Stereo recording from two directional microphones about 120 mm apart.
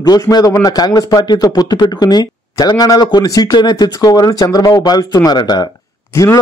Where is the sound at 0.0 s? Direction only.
35° left (ahead or behind).